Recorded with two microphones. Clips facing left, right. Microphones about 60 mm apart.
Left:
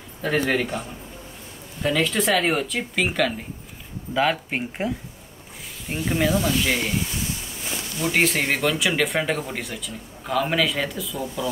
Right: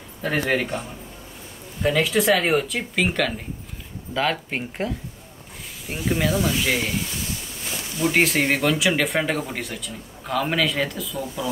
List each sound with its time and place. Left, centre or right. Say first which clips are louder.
0.2 s speech: even; centre
5.9 s speech: left 1 dB; centre